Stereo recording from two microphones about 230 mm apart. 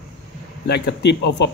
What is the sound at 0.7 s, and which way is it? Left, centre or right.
Speech, left.